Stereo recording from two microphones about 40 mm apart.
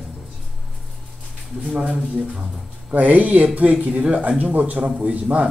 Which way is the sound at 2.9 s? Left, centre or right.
Right.